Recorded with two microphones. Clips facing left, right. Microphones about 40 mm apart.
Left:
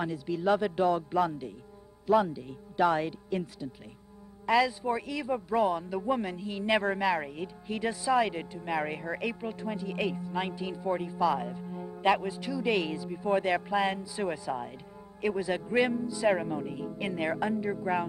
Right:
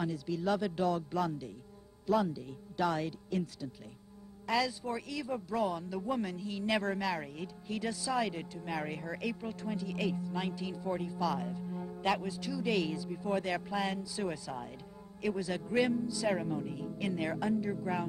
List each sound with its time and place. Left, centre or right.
0.0 s a man's voice: left